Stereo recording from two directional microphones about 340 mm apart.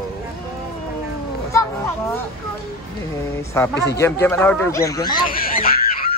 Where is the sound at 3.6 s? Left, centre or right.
Centre.